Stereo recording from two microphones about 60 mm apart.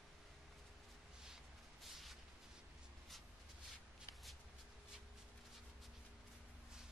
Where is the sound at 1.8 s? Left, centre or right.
Centre.